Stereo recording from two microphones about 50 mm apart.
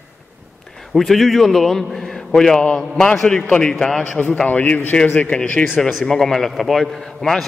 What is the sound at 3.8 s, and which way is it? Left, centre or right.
Speech, centre.